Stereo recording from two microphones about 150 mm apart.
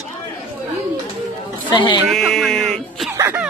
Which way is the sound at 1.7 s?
30° left (ahead or behind).